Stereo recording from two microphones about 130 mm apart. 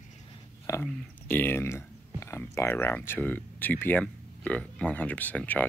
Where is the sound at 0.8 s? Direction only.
15° left (ahead or behind).